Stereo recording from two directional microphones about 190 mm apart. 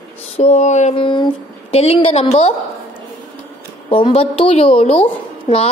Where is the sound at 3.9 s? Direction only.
30° left (ahead or behind).